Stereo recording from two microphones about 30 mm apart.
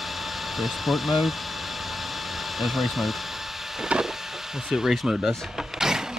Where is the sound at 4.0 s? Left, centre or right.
Centre.